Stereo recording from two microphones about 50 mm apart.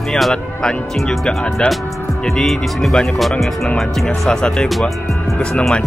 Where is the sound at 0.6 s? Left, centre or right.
Centre.